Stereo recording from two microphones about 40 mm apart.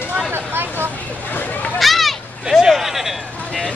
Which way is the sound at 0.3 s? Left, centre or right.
Right.